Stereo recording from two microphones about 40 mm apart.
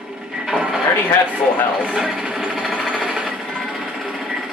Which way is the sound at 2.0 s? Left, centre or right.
Centre.